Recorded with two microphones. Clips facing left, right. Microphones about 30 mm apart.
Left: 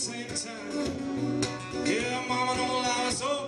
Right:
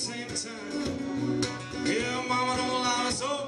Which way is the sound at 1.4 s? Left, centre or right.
Right.